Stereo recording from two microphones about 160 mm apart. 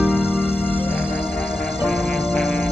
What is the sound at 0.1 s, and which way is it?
Music, 15° left (ahead or behind).